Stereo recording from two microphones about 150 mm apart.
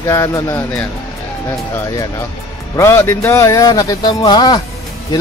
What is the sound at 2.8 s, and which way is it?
Speech, 20° left (ahead or behind).